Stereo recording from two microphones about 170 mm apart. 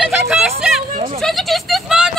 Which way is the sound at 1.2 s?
Centre (ahead or behind).